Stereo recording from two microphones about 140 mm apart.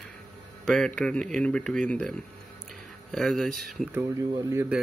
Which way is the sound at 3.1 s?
Centre (ahead or behind).